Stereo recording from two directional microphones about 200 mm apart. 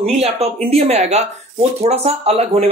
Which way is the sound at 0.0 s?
30° right (ahead or behind).